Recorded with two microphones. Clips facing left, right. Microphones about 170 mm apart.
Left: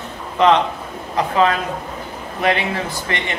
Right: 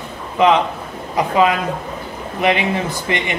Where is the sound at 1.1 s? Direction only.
15° right (ahead or behind).